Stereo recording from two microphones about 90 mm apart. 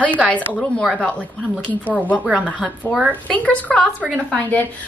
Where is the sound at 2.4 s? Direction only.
15° left (ahead or behind).